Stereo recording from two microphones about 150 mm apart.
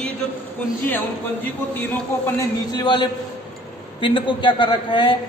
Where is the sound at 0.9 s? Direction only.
15° left (ahead or behind).